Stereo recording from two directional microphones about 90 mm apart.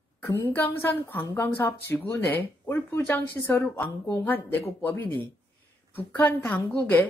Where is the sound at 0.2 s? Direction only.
30° left (ahead or behind).